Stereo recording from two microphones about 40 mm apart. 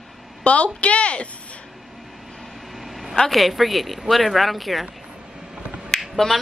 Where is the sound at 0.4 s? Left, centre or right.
Left.